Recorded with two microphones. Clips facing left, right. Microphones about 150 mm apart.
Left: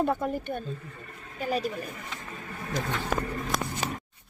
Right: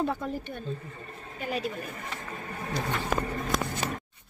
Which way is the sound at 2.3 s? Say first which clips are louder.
Right 2 dB; 35° right (ahead or behind).